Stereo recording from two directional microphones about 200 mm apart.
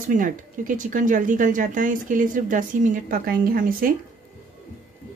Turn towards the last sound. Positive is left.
turn(degrees=-45)  # may be behind; listen again after turning